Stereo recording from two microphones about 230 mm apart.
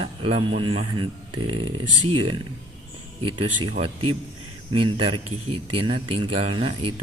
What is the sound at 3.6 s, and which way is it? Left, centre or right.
A man's voice, right.